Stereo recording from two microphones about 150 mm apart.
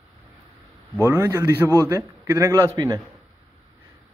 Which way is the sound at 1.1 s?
20° right (ahead or behind).